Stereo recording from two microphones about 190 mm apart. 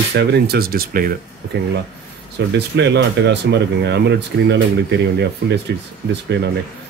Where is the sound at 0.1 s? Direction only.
60° right (ahead or behind).